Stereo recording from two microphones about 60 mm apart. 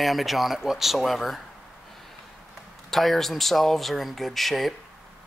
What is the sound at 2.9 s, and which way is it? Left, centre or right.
Speech, centre.